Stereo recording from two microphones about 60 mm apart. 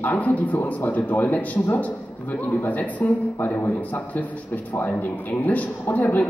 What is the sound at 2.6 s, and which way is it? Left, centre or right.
A man's voice, left.